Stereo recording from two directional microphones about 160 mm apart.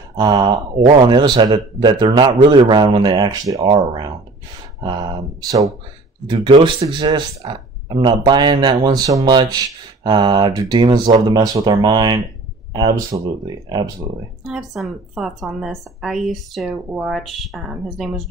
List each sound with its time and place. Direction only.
0.1 s speech: 25° right (ahead or behind)
4.8 s speech: 25° right (ahead or behind)
14.4 s a woman's voice: centre (ahead or behind)